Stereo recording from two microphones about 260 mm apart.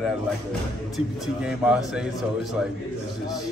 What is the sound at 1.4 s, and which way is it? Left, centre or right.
Speech, centre.